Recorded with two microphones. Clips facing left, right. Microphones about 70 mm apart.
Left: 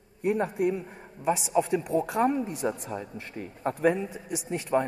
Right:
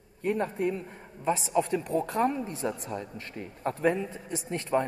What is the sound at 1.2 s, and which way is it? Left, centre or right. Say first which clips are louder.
A man's voice: left 1 dB; centre.